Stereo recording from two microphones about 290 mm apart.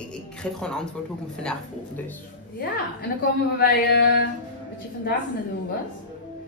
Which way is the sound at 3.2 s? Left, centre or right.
Left.